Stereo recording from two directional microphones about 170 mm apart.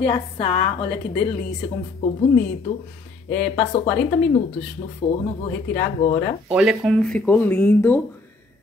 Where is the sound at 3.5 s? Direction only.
30° left (ahead or behind).